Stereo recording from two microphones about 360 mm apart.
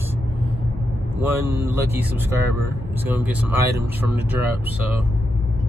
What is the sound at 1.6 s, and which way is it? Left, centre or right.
Speech, centre.